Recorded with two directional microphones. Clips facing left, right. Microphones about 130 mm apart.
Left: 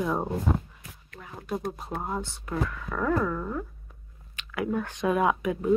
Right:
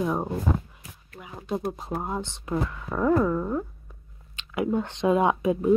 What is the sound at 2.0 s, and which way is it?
Speech, 20° right (ahead or behind).